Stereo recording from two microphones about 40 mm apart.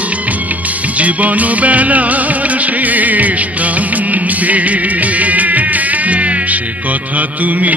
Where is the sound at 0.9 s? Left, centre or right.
Right.